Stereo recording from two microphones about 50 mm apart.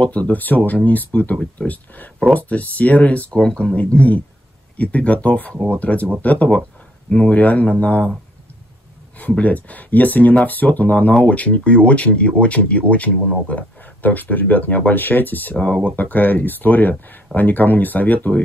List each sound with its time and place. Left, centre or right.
0.0 s speech: left
3.3 s speech: centre
9.4 s speech: left
15.5 s speech: left
15.8 s speech: left